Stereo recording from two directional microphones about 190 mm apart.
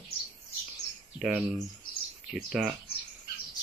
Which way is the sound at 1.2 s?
5° right (ahead or behind).